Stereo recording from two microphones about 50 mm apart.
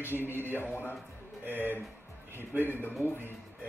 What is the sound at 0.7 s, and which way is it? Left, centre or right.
Speech, left.